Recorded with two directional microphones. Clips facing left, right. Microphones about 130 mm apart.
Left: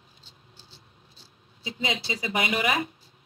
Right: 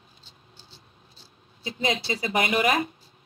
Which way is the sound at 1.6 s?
45° right (ahead or behind).